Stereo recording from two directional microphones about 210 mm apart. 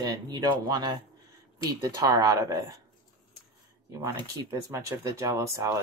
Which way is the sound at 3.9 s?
15° right (ahead or behind).